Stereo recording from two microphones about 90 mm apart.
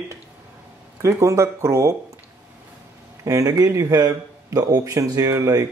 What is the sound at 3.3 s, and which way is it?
Speech, 35° right (ahead or behind).